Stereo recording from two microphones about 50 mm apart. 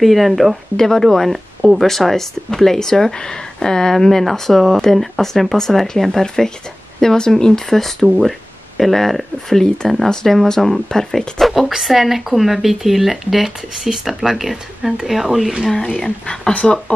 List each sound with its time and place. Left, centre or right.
0.0 s speech: centre
0.7 s speech: centre
16.0 s speech: centre